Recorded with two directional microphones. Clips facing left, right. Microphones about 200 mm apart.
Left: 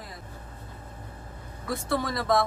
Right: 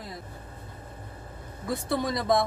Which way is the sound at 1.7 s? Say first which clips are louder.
Right 1 dB; 15° right (ahead or behind).